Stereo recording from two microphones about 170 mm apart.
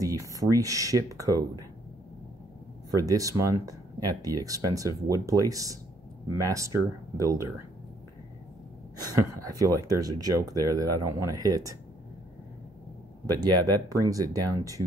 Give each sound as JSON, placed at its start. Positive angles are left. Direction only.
{"t": 0.0, "sound": "speech", "side_deg": -20}
{"t": 2.9, "sound": "speech", "side_deg": -20}
{"t": 9.4, "sound": "speech", "side_deg": -20}
{"t": 13.3, "sound": "speech", "side_deg": -20}